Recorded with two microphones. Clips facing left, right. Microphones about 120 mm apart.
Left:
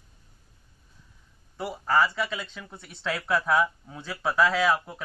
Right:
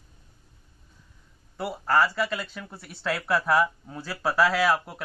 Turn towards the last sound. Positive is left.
turn(degrees=-5)  # may be behind; listen again after turning